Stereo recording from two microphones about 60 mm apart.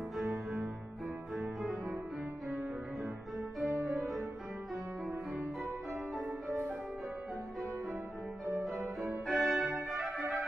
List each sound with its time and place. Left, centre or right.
1.3 s music: centre
3.6 s music: right
9.3 s brass instrument: centre